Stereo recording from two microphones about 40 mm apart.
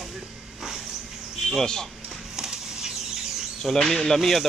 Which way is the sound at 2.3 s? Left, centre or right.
Centre.